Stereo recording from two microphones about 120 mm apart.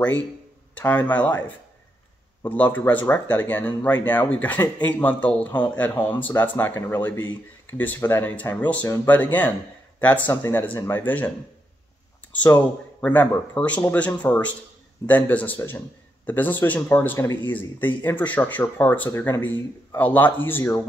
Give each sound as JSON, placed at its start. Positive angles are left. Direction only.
{"t": 0.7, "sound": "speech", "side_deg": 15}
{"t": 2.4, "sound": "speech", "side_deg": 15}
{"t": 13.0, "sound": "speech", "side_deg": 10}